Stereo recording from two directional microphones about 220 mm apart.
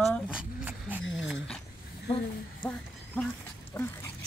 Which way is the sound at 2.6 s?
5° left (ahead or behind).